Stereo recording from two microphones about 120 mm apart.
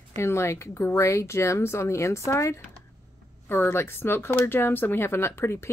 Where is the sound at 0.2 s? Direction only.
20° left (ahead or behind).